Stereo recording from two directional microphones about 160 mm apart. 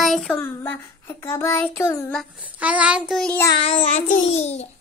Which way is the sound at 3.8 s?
50° left (ahead or behind).